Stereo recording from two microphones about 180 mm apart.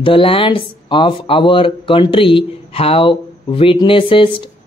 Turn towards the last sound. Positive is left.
turn(degrees=30)  # may be behind; listen again after turning